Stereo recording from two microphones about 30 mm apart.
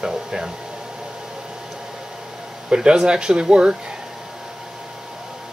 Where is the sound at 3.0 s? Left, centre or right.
Right.